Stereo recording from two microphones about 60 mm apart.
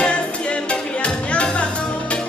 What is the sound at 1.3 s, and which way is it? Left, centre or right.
Music, centre.